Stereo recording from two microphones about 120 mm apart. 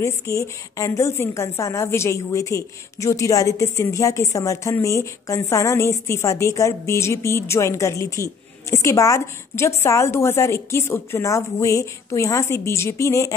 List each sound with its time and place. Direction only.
0.0 s a woman's voice: 25° left (ahead or behind)